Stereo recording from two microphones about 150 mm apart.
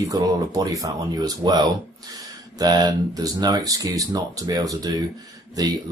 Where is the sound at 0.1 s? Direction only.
25° right (ahead or behind).